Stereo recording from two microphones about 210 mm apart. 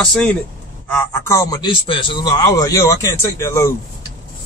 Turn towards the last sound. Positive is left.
turn(degrees=15)  # may be behind; listen again after turning